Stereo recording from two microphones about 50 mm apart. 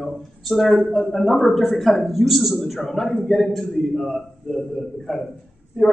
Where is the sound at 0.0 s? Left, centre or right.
Centre.